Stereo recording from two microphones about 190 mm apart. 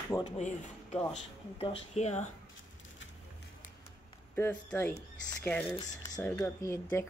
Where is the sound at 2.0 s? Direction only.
35° left (ahead or behind).